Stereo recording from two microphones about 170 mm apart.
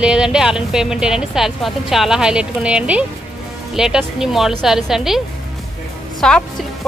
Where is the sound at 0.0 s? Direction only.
5° right (ahead or behind).